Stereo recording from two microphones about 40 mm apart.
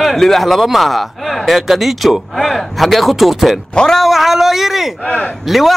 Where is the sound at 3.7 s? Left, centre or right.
Left.